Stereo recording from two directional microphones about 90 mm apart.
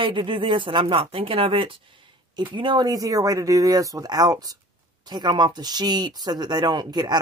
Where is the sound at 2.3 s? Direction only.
60° right (ahead or behind).